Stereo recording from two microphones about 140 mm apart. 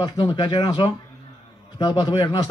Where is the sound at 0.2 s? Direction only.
40° left (ahead or behind).